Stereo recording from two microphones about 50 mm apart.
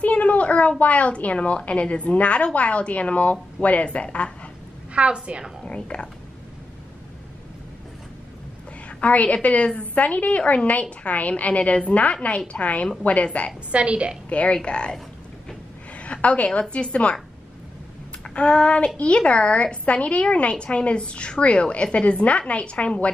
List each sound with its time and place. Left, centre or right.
0.0 s a woman's voice: left
4.9 s a woman's voice: right
5.7 s a woman's voice: left
8.8 s a woman's voice: left
13.7 s a woman's voice: right
14.3 s a woman's voice: left
16.0 s a woman's voice: left
18.2 s a sound: left
18.9 s a woman's voice: left